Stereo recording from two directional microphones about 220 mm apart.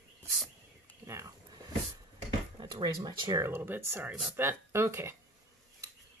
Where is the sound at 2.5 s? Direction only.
20° right (ahead or behind).